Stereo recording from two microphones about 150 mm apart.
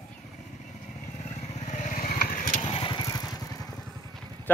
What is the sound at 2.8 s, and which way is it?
Motorcycle, 30° left (ahead or behind).